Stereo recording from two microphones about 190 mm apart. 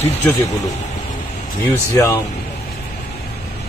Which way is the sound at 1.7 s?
15° left (ahead or behind).